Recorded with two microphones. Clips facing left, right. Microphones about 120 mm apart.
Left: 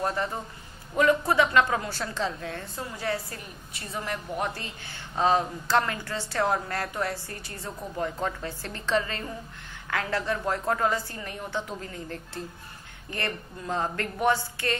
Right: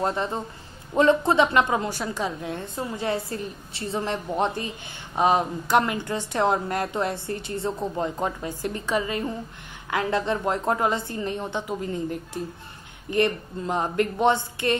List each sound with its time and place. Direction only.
0.0 s a woman's voice: 20° right (ahead or behind)